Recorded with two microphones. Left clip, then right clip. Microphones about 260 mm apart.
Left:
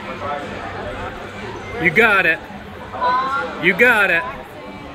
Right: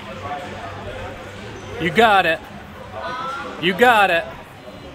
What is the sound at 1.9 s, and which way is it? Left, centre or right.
Speech, centre.